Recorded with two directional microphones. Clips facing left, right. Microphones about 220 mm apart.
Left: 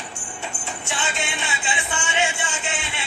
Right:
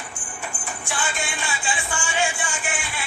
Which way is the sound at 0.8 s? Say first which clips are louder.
Even; 25° left (ahead or behind).